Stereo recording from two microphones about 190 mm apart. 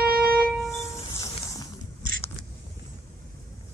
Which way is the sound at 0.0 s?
5° right (ahead or behind).